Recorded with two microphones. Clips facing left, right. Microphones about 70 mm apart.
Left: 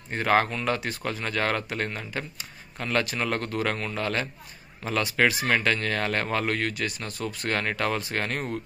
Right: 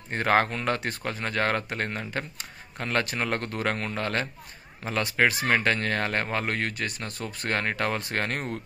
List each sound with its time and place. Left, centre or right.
0.1 s speech: right